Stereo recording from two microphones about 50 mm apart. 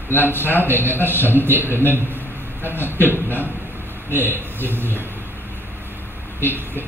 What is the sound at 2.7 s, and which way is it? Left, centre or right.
Speech, left.